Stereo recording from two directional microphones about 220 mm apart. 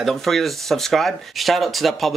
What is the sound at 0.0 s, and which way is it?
Speech, centre (ahead or behind).